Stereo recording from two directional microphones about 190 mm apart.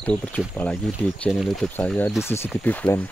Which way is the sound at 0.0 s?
5° left (ahead or behind).